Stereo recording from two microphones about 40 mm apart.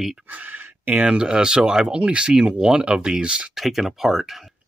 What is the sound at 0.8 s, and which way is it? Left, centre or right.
Speech, right.